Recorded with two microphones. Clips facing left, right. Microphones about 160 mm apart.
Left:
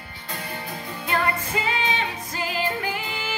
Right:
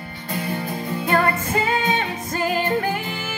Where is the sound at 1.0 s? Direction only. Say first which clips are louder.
Right 4 dB; 50° right (ahead or behind).